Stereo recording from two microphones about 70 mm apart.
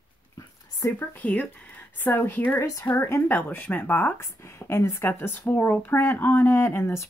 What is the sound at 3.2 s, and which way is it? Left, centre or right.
Speech, left.